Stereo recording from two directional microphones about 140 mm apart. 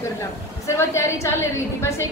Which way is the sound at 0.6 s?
20° left (ahead or behind).